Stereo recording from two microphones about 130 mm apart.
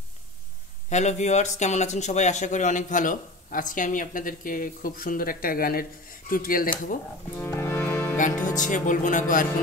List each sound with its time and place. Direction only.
0.8 s speech: 65° left (ahead or behind); by 6.7 s 90° left
7.3 s music: 20° left (ahead or behind)
8.5 s speech: 75° left (ahead or behind)